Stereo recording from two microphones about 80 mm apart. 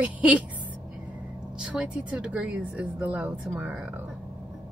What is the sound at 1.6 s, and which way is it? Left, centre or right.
Speech, centre.